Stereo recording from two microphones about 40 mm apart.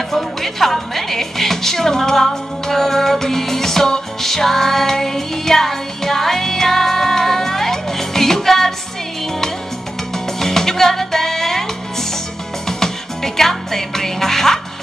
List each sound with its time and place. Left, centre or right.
0.1 s music: centre
10.1 s music: centre